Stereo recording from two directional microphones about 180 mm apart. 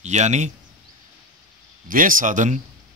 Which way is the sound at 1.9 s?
50° right (ahead or behind).